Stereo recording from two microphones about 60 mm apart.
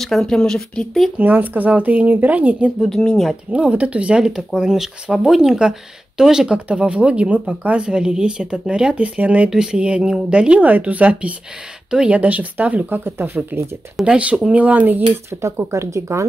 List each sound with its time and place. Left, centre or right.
0.0 s speech: centre
1.1 s speech: right
2.9 s speech: centre
3.5 s speech: right
9.5 s speech: centre; by 13.6 s right
14.0 s speech: centre
15.4 s speech: right